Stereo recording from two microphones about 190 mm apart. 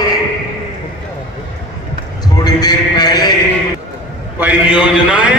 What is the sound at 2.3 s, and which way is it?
Mantra, 20° left (ahead or behind).